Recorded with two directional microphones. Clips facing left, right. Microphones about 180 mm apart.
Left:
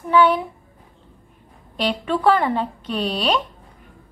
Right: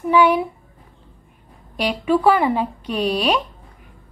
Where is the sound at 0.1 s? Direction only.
10° right (ahead or behind).